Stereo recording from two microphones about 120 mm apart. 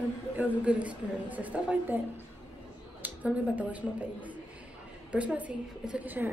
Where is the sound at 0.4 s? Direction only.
10° right (ahead or behind).